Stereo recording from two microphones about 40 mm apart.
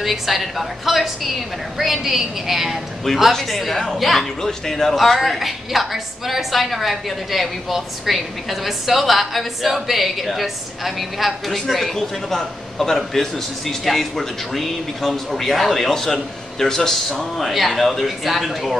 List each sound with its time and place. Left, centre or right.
0.0 s a woman's voice: centre
17.5 s a woman's voice: centre